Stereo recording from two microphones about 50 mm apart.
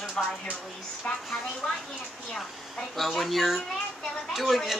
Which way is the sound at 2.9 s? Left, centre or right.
Centre.